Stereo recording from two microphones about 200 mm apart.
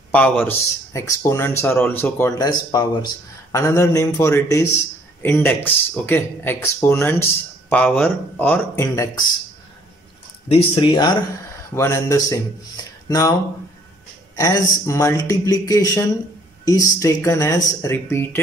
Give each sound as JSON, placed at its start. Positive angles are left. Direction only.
{"t": 0.1, "sound": "a man's voice", "side_deg": 5}
{"t": 10.5, "sound": "a man's voice", "side_deg": 30}
{"t": 14.3, "sound": "a man's voice", "side_deg": 15}